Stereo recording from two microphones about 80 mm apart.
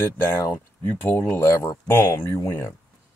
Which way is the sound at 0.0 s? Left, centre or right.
Left.